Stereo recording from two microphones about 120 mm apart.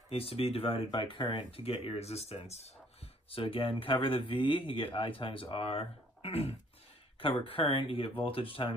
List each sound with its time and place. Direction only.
0.1 s speech: 55° left (ahead or behind)